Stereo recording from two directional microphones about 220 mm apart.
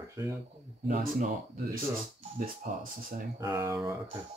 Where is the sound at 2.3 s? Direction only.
40° right (ahead or behind).